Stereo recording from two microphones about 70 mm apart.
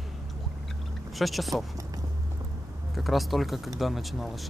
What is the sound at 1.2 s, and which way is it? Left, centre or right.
Speech, centre.